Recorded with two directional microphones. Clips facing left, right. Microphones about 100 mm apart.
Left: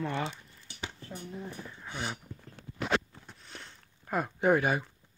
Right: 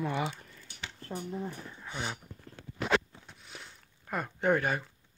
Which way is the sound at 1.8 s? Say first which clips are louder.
Even; 5° left (ahead or behind).